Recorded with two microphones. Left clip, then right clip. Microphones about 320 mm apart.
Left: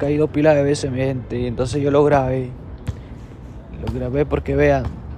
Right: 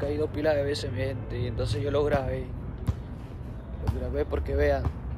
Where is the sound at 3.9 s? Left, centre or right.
Centre.